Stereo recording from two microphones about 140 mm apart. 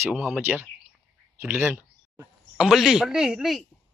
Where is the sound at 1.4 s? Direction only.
15° right (ahead or behind).